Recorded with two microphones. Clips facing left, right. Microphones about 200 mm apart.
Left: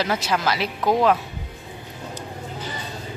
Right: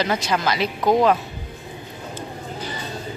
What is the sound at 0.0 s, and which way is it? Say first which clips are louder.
Speech: right 1 dB; 5° left (ahead or behind).